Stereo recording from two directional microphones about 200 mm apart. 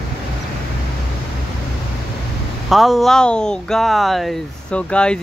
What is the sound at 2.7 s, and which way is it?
Speech, centre (ahead or behind).